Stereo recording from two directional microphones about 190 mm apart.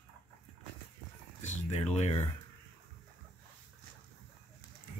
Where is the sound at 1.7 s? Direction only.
35° left (ahead or behind).